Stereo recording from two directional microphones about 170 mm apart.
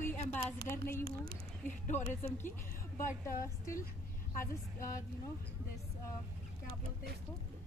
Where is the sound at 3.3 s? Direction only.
55° left (ahead or behind).